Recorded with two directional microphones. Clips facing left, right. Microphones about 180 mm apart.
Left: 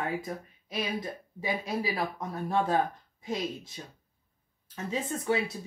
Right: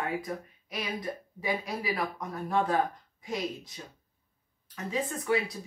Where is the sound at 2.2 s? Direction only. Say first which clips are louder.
Even; 25° left (ahead or behind).